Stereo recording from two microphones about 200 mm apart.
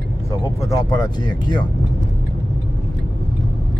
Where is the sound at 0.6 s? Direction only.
20° left (ahead or behind).